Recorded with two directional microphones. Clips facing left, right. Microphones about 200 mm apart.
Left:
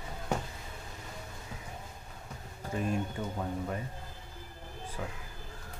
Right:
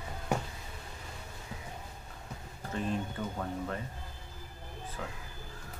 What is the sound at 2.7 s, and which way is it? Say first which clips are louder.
Speech: left 2 dB; 10° left (ahead or behind).